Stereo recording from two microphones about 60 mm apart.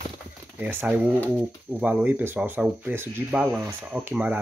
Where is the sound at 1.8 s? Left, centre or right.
Right.